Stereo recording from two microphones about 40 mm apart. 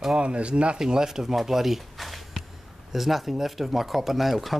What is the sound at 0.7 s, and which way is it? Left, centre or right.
Speech, centre.